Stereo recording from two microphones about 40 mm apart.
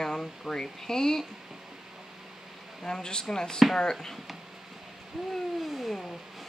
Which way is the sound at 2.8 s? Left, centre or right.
Centre.